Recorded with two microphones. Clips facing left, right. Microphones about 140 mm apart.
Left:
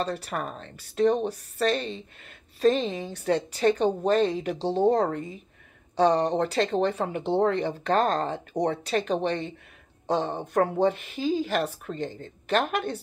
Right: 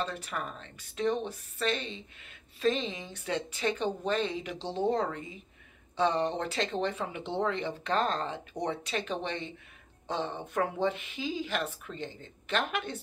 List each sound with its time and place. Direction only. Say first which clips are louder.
0.0 s speech: left 5 dB; 40° left (ahead or behind)